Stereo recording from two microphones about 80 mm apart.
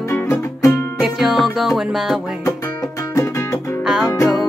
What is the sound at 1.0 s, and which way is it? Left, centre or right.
Music, centre.